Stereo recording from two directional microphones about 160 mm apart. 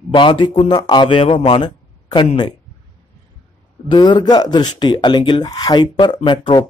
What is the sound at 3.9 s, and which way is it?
Speech, 25° left (ahead or behind).